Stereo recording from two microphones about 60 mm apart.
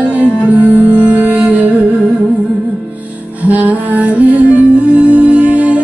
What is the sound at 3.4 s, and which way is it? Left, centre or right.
Music, right.